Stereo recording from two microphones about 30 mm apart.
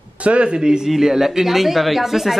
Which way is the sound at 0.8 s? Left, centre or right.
Centre.